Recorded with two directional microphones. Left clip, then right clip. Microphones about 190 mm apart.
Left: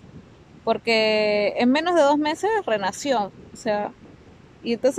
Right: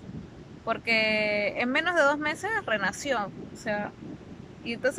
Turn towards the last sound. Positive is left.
turn(degrees=25)  # may be behind; listen again after turning